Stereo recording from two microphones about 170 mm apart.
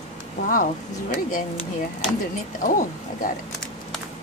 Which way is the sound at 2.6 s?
50° left (ahead or behind).